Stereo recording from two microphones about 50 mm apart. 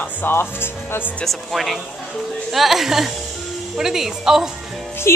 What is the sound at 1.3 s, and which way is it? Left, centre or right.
A woman's voice, centre.